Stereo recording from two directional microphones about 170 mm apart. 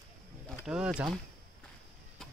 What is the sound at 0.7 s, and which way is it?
Speech, 5° right (ahead or behind).